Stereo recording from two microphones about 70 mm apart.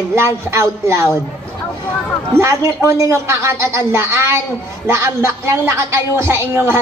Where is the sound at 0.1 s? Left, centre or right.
Right.